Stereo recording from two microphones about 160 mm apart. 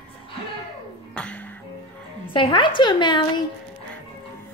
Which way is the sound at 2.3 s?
30° left (ahead or behind).